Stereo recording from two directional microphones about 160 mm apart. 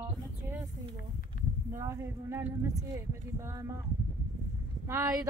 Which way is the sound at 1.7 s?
15° right (ahead or behind).